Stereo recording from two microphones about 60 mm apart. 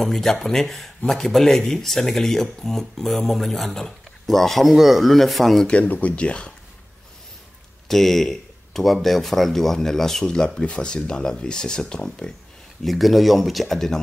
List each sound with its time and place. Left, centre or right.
0.0 s speech: centre
5.7 s speech: left
7.9 s speech: centre
12.8 s speech: centre